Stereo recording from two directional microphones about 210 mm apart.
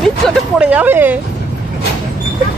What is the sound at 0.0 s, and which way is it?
Speech, centre (ahead or behind).